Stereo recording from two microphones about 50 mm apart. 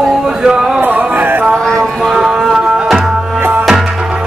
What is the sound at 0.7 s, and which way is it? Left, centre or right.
Music, right.